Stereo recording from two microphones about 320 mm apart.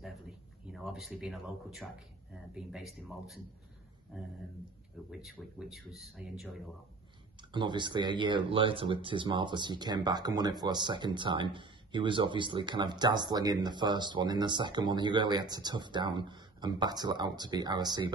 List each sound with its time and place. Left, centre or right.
0.7 s speech: centre
5.1 s speech: centre
7.5 s speech: centre